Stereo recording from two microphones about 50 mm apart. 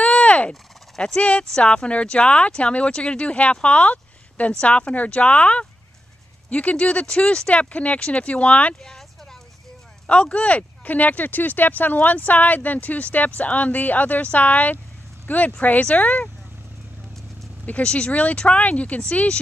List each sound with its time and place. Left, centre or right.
0.0 s fowl: left
0.5 s fowl: centre
1.6 s speech: left
8.8 s a sound: centre
10.0 s speech: left
17.8 s speech: left